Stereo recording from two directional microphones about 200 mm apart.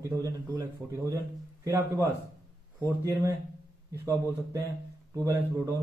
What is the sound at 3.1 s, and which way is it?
Speech, 15° right (ahead or behind).